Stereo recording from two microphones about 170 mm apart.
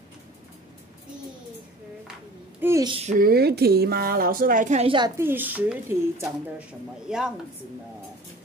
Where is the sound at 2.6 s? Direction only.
20° right (ahead or behind).